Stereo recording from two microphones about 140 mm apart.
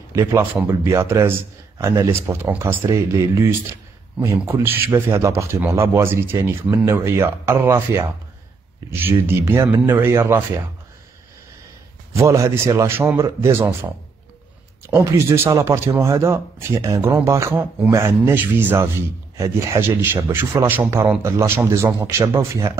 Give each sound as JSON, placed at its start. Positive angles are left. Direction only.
{"t": 0.1, "sound": "a man's voice", "side_deg": -20}
{"t": 12.2, "sound": "a man's voice", "side_deg": -20}